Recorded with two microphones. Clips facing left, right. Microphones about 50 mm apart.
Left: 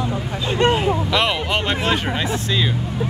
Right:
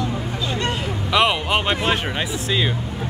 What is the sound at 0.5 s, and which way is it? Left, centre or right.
Speech, left.